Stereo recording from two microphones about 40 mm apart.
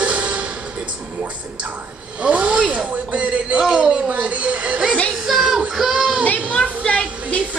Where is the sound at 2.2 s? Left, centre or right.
Right.